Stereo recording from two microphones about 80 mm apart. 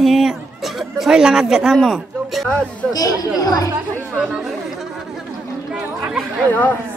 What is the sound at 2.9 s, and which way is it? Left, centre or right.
Speech, left.